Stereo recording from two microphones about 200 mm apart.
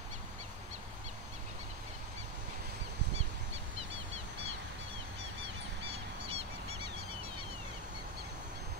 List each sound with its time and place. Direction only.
6.2 s goose: 30° right (ahead or behind)